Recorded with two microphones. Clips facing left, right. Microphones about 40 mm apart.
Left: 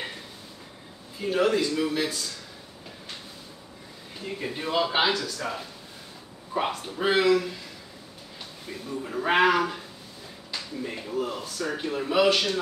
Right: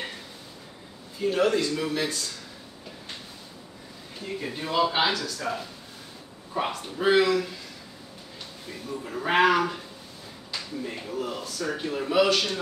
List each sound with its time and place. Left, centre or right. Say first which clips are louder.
1.2 s a man's voice: even; centre
4.5 s a man's voice: right 1 dB; centre
8.6 s a man's voice: left 1 dB; centre